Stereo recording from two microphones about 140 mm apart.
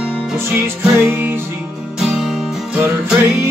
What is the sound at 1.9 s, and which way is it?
Music, 5° right (ahead or behind).